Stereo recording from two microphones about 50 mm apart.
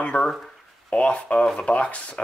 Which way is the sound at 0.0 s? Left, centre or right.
Left.